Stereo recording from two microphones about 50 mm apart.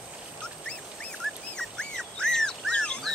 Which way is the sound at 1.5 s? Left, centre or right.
Centre.